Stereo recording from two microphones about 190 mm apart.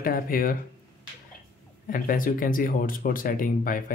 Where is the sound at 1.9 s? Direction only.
45° left (ahead or behind).